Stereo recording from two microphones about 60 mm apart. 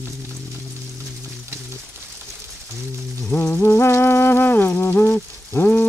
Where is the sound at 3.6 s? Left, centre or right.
Left.